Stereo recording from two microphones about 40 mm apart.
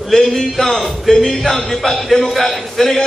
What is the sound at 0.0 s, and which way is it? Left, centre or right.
A man's voice, centre.